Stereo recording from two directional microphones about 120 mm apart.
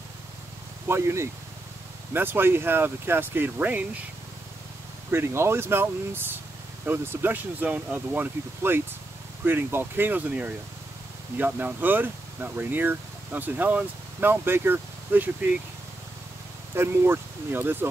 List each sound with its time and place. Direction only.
0.8 s speech: 20° right (ahead or behind)
5.1 s speech: 20° right (ahead or behind)
16.7 s speech: 20° right (ahead or behind)